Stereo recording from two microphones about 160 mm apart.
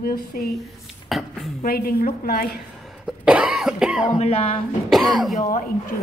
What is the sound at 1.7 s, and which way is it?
Speech, 70° left (ahead or behind).